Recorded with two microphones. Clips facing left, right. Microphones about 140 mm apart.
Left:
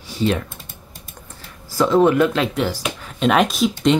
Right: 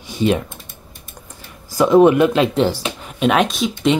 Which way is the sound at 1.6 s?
15° right (ahead or behind).